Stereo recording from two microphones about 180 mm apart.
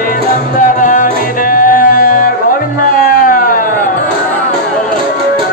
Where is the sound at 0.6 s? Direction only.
45° left (ahead or behind).